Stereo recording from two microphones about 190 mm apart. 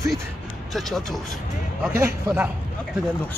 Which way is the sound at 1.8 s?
15° right (ahead or behind).